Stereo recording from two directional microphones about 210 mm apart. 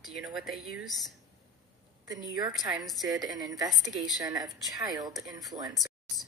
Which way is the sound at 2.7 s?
Centre (ahead or behind).